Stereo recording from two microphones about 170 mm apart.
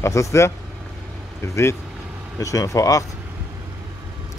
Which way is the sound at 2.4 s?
20° left (ahead or behind).